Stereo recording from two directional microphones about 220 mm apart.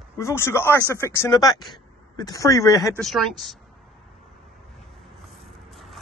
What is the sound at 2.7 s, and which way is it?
Speech, centre (ahead or behind).